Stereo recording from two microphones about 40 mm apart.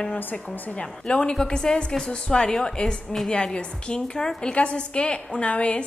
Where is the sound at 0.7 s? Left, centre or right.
Left.